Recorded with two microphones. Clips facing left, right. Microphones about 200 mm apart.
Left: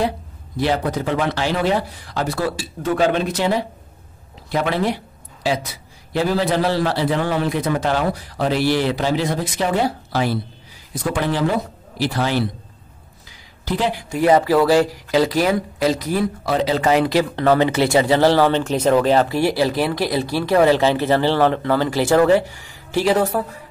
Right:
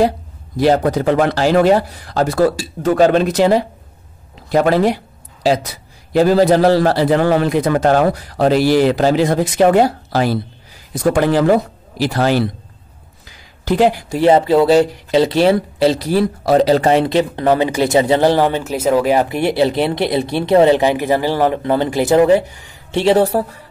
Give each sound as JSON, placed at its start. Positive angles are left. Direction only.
{"t": 0.7, "sound": "speech", "side_deg": -45}
{"t": 13.7, "sound": "speech", "side_deg": -45}
{"t": 14.1, "sound": "speech", "side_deg": -25}
{"t": 16.9, "sound": "speech", "side_deg": -25}